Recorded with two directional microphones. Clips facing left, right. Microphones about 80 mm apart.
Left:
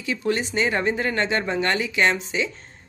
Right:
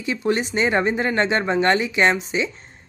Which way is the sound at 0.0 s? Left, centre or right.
Right.